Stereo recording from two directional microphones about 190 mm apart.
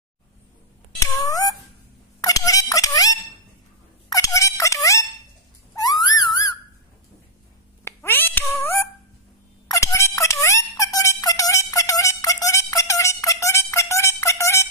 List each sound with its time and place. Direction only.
1.2 s cat: 20° left (ahead or behind)
2.2 s a sound: 20° left (ahead or behind)
4.1 s music: 15° left (ahead or behind)
5.8 s a sound: 20° left (ahead or behind)
7.8 s meow: 10° left (ahead or behind)
9.7 s music: 15° left (ahead or behind)